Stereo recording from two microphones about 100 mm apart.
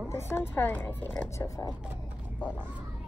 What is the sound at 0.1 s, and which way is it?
Speech, 25° left (ahead or behind).